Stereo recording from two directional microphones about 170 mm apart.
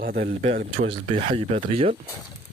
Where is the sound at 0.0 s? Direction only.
60° right (ahead or behind).